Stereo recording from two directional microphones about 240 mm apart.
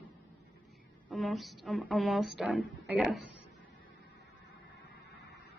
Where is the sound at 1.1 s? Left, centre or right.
Centre.